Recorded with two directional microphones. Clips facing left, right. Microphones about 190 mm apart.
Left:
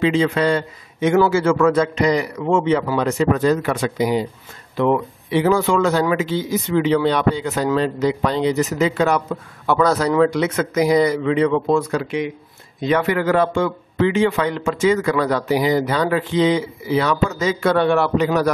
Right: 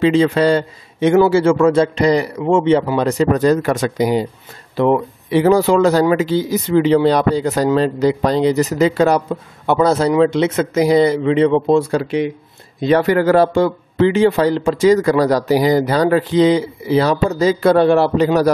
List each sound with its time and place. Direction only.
0.0 s a man's voice: 35° right (ahead or behind)